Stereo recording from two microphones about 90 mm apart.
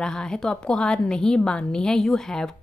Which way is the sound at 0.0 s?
10° left (ahead or behind).